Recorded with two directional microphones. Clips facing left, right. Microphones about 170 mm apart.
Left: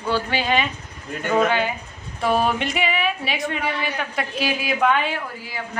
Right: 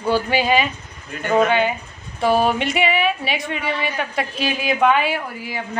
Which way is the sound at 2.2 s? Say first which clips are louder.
Right 3 dB; centre (ahead or behind).